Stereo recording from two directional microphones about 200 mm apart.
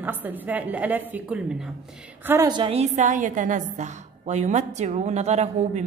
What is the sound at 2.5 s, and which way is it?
A woman's voice, 25° right (ahead or behind).